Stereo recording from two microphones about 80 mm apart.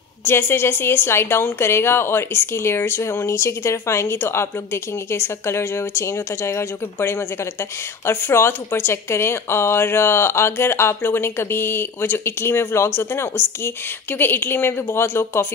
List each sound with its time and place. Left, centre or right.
0.2 s a woman's voice: left